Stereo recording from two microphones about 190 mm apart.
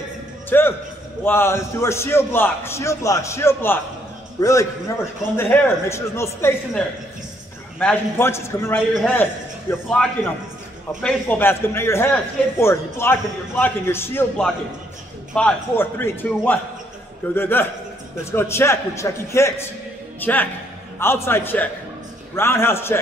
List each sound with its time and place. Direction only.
0.5 s a man's voice: 10° left (ahead or behind)
7.8 s a man's voice: 10° left (ahead or behind)